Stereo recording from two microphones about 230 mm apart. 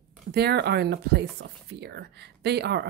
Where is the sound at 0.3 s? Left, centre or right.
Right.